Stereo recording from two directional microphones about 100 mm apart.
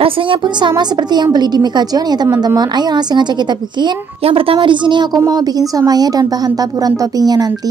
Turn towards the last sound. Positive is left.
turn(degrees=-40)  # may be behind; listen again after turning